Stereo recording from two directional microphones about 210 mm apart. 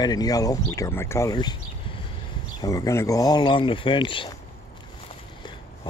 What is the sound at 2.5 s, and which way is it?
Speech, 15° left (ahead or behind).